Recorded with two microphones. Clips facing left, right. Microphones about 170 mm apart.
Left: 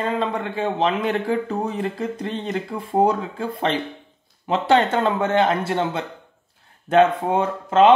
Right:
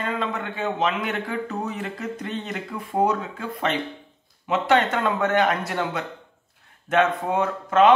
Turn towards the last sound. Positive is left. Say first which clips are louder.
# left 2 dB
turn(degrees=30)  # may be behind; listen again after turning